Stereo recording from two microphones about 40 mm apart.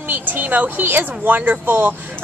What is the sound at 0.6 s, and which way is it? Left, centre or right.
Speech, right.